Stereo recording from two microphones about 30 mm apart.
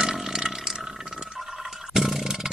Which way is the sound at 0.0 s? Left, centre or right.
Centre.